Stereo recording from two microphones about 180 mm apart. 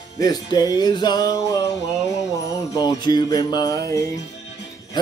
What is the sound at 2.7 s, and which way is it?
Speech, 25° left (ahead or behind).